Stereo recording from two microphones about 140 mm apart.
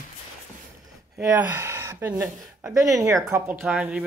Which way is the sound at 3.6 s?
10° right (ahead or behind).